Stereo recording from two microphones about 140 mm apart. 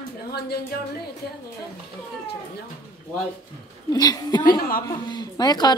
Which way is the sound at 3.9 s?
30° left (ahead or behind).